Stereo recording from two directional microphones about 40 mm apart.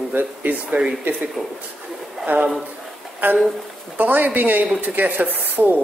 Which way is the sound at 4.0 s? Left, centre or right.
Right.